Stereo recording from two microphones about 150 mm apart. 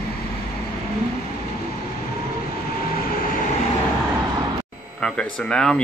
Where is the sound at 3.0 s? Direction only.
75° left (ahead or behind).